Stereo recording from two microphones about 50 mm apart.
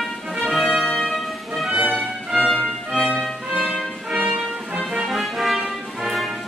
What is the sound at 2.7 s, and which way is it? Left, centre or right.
Music, centre.